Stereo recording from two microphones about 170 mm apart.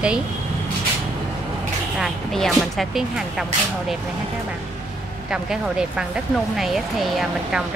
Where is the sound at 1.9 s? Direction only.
Centre (ahead or behind).